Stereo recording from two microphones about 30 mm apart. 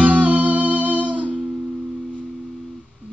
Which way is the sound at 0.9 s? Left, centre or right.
Right.